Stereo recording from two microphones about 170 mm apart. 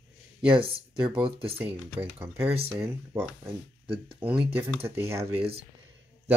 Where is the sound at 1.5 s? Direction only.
15° right (ahead or behind).